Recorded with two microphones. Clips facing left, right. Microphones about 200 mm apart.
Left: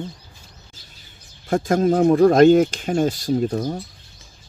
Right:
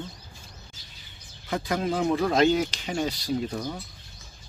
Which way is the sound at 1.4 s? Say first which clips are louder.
Left 9 dB; 50° left (ahead or behind).